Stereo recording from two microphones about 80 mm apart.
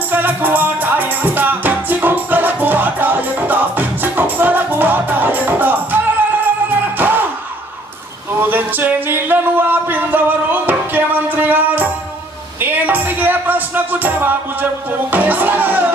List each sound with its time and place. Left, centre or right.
0.1 s music: right
8.4 s a sound: right
12.5 s music: right